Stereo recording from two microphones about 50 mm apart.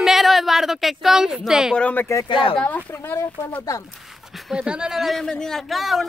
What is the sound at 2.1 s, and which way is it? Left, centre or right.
Speech, left.